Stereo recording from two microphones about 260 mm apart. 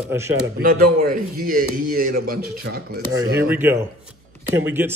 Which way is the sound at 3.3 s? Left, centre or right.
Centre.